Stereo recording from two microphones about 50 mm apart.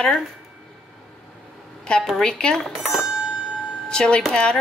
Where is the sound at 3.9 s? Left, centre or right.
Centre.